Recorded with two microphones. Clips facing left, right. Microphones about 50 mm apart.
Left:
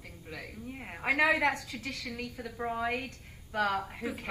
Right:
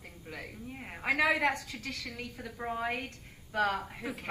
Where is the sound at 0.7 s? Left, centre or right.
Centre.